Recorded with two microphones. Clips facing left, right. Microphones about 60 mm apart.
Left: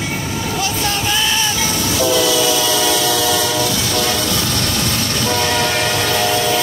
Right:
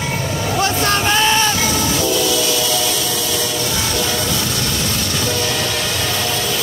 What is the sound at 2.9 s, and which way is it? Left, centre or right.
Train, left.